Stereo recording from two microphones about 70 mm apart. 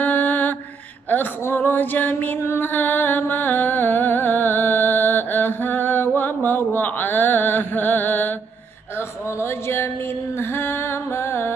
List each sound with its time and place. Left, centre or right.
0.0 s mantra: left
1.1 s female singing: left
9.4 s music: left
10.3 s a sound: left